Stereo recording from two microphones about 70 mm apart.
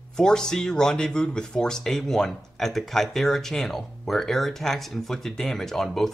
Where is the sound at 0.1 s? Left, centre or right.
Centre.